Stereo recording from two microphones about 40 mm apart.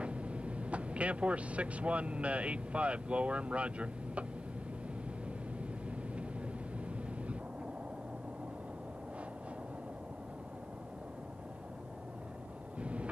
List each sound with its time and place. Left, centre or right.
0.0 s speech: right
5.9 s vehicle: right
12.8 s vehicle: right